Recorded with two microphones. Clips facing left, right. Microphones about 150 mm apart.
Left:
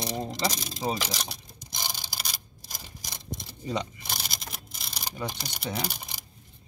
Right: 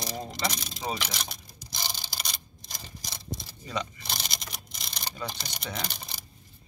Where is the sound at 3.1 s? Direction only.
20° left (ahead or behind).